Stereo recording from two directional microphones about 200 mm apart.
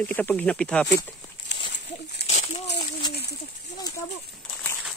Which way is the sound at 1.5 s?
60° left (ahead or behind).